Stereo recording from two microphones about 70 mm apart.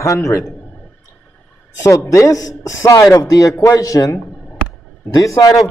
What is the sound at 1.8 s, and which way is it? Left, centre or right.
A man's voice, left.